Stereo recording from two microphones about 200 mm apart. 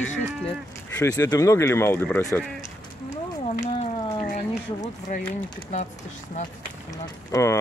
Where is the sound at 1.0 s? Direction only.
20° left (ahead or behind).